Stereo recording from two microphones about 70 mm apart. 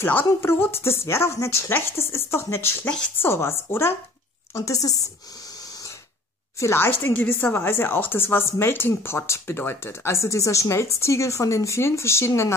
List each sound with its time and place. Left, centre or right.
0.1 s speech: left
4.6 s speech: left
6.6 s speech: left
10.1 s speech: left